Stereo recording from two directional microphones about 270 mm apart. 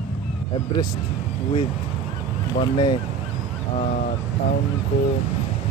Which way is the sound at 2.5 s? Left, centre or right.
Centre.